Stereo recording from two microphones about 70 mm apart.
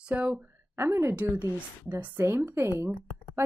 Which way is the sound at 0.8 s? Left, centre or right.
Right.